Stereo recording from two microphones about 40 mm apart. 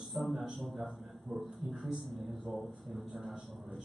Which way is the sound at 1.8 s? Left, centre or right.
Centre.